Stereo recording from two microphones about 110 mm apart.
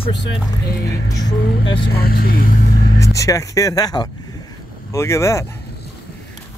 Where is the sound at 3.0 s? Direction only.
30° left (ahead or behind).